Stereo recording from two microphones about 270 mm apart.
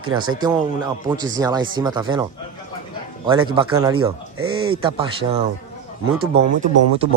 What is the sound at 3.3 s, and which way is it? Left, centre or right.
A man's voice, centre.